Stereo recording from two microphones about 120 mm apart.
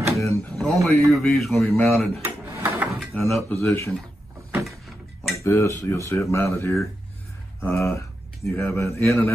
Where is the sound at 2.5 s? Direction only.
20° right (ahead or behind).